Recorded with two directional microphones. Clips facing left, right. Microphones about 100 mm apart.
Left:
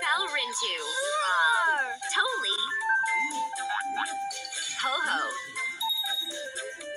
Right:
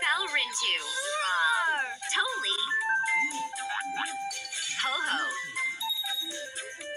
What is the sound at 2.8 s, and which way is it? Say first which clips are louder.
Music: left 3 dB; 20° left (ahead or behind).